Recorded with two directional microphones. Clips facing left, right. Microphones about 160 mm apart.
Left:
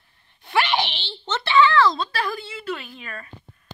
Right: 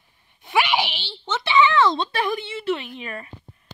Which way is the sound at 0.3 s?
10° right (ahead or behind).